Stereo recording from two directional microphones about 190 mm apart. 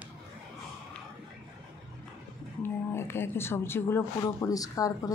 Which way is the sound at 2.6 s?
10° left (ahead or behind).